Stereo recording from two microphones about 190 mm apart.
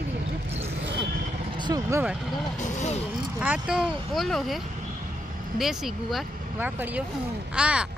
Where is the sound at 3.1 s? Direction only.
5° right (ahead or behind).